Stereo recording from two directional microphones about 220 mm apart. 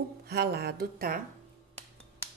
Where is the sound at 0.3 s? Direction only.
45° right (ahead or behind).